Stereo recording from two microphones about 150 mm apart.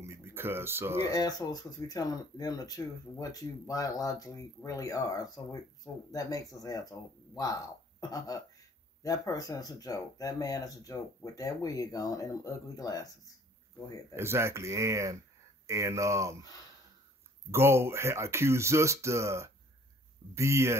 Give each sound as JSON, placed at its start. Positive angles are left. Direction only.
{"t": 0.0, "sound": "speech", "side_deg": -15}
{"t": 1.1, "sound": "speech", "side_deg": 25}
{"t": 6.6, "sound": "speech", "side_deg": 25}
{"t": 14.1, "sound": "speech", "side_deg": -15}
{"t": 17.5, "sound": "speech", "side_deg": -15}